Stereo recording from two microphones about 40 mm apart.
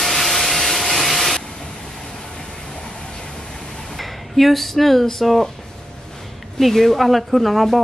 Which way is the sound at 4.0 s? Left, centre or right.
Centre.